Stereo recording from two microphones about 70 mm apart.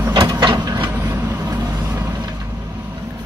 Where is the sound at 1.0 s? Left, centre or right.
Right.